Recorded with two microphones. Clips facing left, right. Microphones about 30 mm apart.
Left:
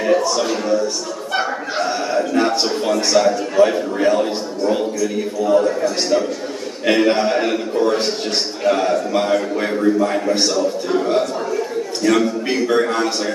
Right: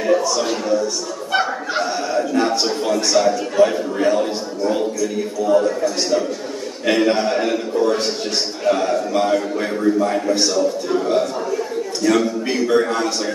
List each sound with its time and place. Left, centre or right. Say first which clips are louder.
0.0 s a sound: left 1 dB; centre
1.3 s speech: right 2 dB; centre
1.8 s a man's voice: left 1 dB; centre